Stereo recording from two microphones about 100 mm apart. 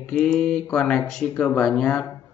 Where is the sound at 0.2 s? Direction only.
10° left (ahead or behind).